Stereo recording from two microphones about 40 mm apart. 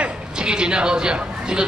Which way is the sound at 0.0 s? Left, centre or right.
Right.